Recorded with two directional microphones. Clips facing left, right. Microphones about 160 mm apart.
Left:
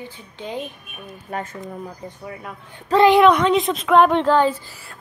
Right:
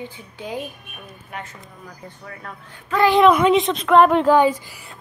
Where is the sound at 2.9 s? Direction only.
35° left (ahead or behind).